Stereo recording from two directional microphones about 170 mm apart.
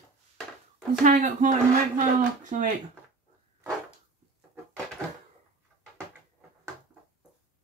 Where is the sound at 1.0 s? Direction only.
45° right (ahead or behind).